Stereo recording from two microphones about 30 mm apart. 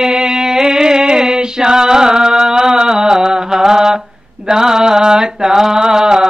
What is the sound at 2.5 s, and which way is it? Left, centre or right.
Mantra, centre.